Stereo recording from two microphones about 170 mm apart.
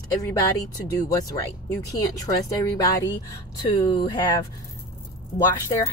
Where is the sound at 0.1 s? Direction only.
20° left (ahead or behind).